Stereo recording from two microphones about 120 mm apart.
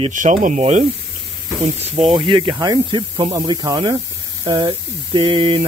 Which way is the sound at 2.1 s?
45° right (ahead or behind).